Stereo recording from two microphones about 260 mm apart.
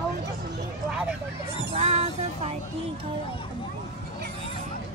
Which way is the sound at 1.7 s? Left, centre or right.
Right.